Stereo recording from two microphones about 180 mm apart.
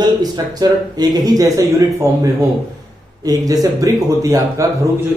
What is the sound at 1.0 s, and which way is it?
A man's voice, 20° right (ahead or behind).